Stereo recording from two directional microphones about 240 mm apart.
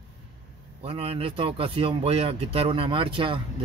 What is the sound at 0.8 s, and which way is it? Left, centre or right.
Speech, right.